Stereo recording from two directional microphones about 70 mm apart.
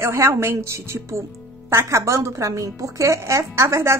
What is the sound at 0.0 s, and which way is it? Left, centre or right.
A woman's voice, right.